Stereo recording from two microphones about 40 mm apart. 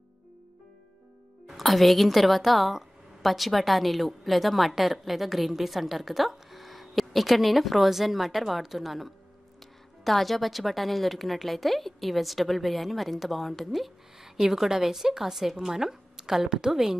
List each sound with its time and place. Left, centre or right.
1.5 s a woman's voice: centre